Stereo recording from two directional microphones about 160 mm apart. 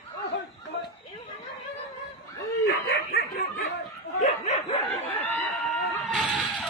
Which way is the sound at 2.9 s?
75° left (ahead or behind).